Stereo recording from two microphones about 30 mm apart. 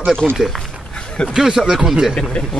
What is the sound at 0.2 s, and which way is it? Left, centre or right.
Speech, centre.